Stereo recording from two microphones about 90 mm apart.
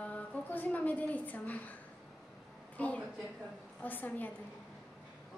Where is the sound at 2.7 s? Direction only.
15° left (ahead or behind).